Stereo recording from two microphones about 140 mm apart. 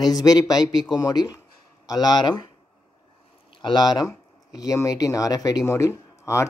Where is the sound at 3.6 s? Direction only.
30° left (ahead or behind).